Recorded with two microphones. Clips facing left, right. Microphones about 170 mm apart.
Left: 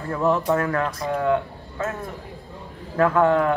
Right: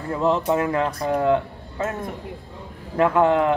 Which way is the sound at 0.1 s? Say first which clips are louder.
Even; 20° right (ahead or behind).